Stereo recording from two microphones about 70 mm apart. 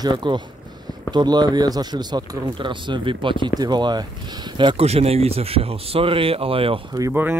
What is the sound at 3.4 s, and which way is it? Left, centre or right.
Speech, right.